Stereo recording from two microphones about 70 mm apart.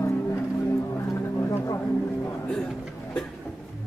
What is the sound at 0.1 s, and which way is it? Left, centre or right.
Music, left.